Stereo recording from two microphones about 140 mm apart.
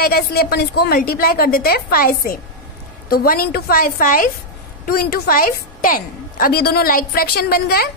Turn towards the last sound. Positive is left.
turn(degrees=90)